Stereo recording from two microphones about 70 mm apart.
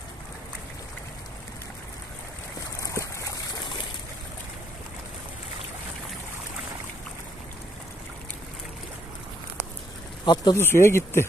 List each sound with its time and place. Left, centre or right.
2.8 s a sound: left
10.2 s speech: left
10.5 s speech: left